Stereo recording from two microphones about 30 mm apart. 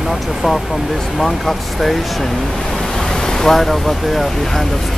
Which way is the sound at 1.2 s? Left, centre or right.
Centre.